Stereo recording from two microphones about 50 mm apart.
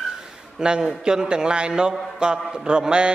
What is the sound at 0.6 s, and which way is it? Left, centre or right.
Speech, centre.